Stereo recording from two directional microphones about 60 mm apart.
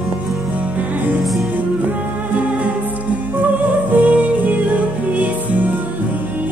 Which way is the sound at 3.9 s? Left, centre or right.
Right.